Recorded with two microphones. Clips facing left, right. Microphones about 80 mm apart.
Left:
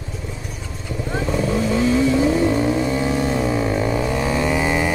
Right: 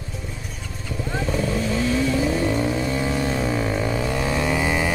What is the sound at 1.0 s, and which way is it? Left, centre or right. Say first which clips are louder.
Vehicle: left 3 dB; centre.